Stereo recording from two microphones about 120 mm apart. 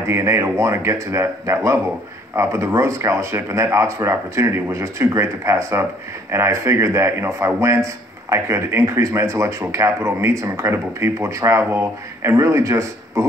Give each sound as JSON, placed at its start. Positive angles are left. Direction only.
{"t": 0.0, "sound": "a man's voice", "side_deg": -25}